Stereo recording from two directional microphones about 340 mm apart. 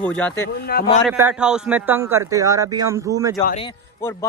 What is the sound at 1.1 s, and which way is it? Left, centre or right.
A man's voice, centre.